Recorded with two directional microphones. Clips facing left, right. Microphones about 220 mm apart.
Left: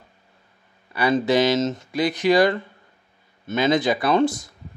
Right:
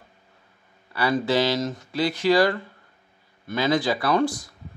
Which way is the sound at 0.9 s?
20° left (ahead or behind).